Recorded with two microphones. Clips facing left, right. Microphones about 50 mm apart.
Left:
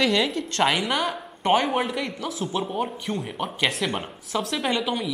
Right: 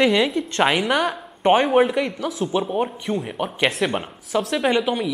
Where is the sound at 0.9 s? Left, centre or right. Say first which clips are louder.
Right 4 dB; centre.